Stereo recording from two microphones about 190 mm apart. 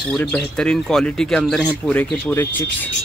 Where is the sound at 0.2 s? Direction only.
5° left (ahead or behind).